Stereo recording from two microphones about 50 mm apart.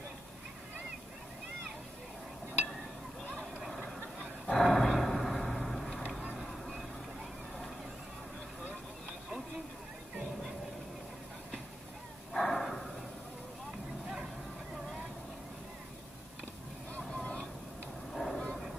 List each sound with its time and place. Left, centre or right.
3.6 s vehicle: centre
4.5 s a sound: centre
6.3 s vehicle: centre
12.3 s bow-wow: centre
16.9 s vehicle: centre
18.1 s vehicle: centre